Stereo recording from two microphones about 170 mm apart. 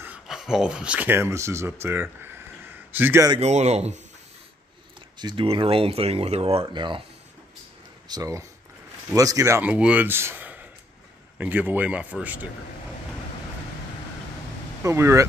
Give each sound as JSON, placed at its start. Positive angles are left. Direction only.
{"t": 0.0, "sound": "speech", "side_deg": -5}
{"t": 3.3, "sound": "speech", "side_deg": -40}
{"t": 5.2, "sound": "speech", "side_deg": -30}
{"t": 8.1, "sound": "speech", "side_deg": -20}
{"t": 14.8, "sound": "speech", "side_deg": -15}